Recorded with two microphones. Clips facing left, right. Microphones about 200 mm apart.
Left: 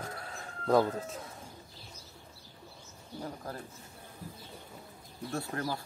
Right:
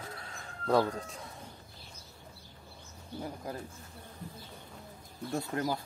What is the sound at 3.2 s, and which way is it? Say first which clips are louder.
Bird: right 1 dB; 15° right (ahead or behind).